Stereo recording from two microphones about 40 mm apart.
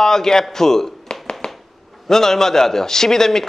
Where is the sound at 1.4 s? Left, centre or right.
Centre.